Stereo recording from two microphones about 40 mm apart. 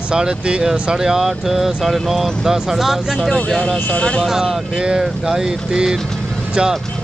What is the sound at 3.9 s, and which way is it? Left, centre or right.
Speech, left.